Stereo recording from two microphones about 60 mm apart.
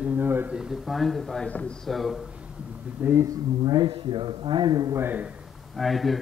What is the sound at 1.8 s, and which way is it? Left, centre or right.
Speech, centre.